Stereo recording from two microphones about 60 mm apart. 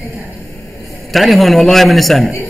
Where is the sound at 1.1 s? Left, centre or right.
Centre.